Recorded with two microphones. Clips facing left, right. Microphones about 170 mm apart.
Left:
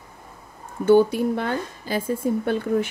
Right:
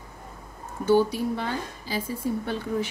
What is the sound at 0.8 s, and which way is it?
Speech, 55° left (ahead or behind).